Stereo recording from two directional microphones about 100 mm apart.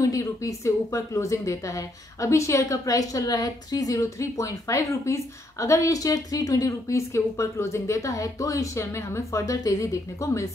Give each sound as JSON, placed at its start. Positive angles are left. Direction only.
{"t": 0.0, "sound": "speech", "side_deg": 30}